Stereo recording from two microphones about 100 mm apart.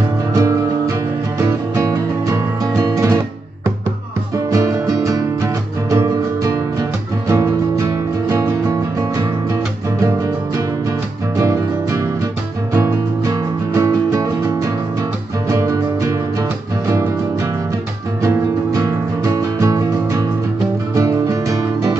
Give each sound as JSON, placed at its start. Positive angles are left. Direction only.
{"t": 0.3, "sound": "music", "side_deg": -35}
{"t": 4.5, "sound": "music", "side_deg": -35}